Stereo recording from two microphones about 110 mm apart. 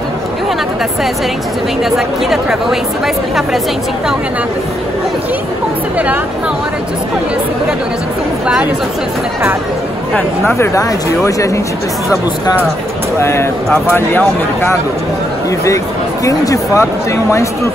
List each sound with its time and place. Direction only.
1.9 s speech: centre (ahead or behind)
10.1 s speech: 20° left (ahead or behind)
13.2 s speech: 25° left (ahead or behind)
16.3 s speech: 30° left (ahead or behind)